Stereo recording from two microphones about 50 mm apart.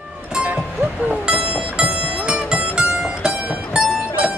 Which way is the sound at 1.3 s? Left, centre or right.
Centre.